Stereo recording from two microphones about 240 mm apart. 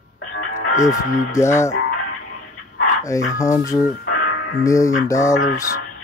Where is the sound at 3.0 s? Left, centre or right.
Centre.